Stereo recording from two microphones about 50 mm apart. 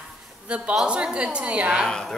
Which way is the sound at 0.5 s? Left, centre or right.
Right.